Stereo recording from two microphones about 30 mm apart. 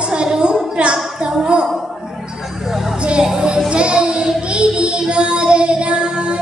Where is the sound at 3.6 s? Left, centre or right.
Right.